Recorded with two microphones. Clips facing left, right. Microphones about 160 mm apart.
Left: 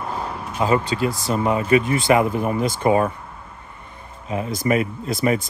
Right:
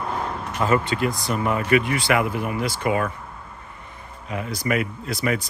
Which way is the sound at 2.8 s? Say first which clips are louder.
Left 6 dB; 30° left (ahead or behind).